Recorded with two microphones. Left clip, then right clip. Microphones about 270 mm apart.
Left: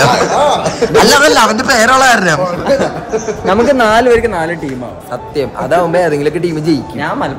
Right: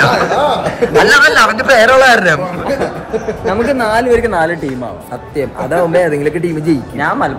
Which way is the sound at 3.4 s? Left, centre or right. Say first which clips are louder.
Left 5 dB; left.